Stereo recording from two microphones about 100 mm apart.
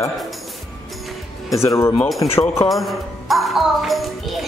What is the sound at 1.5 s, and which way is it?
Speech, 30° left (ahead or behind).